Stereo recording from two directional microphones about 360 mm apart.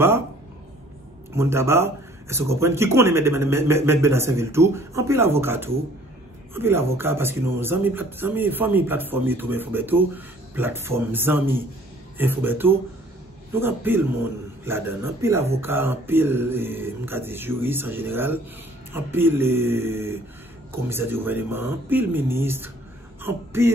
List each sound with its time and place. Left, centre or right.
1.3 s speech: centre